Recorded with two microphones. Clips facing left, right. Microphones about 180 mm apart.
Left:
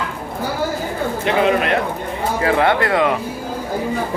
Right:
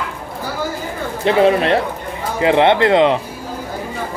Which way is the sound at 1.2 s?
30° right (ahead or behind).